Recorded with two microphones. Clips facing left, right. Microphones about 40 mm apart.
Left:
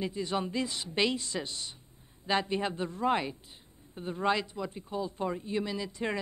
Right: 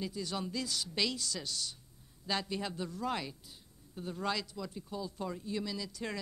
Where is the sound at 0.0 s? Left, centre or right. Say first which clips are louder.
Left 6 dB; left.